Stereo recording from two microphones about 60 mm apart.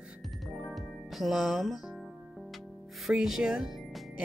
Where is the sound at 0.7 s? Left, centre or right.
Centre.